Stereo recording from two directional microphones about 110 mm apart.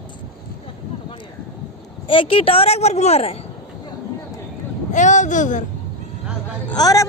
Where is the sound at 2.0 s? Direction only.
55° left (ahead or behind); by 3.4 s 70° left (ahead or behind).